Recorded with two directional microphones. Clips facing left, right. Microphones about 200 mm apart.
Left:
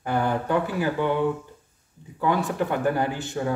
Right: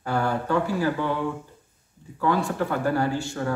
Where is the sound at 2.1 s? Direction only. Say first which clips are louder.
Even; 20° left (ahead or behind).